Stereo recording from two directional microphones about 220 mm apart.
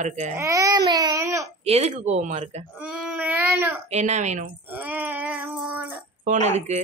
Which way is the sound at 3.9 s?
30° right (ahead or behind).